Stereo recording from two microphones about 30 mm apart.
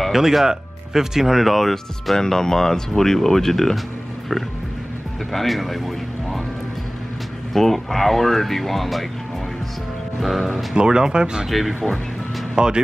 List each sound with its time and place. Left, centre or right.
0.1 s speech: centre
1.5 s speech: centre
2.1 s speech: centre
5.3 s speech: centre
7.5 s speech: centre
10.2 s speech: centre
10.7 s speech: right
11.4 s speech: centre
12.5 s speech: right